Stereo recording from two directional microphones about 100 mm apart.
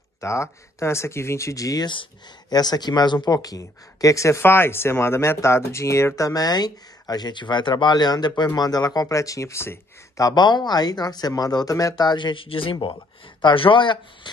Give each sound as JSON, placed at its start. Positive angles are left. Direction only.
{"t": 0.2, "sound": "speech", "side_deg": 30}
{"t": 1.9, "sound": "speech", "side_deg": 50}
{"t": 3.3, "sound": "speech", "side_deg": 35}